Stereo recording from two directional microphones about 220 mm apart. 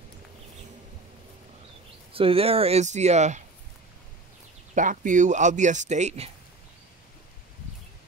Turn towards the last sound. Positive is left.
turn(degrees=-30)  # may be behind; listen again after turning